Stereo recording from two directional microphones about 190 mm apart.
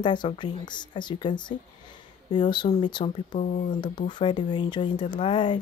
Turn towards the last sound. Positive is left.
turn(degrees=25)  # may be behind; listen again after turning